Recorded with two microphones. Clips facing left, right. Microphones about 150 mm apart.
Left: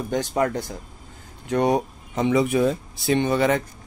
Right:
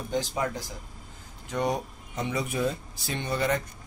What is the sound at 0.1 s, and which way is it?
Speech, 65° left (ahead or behind).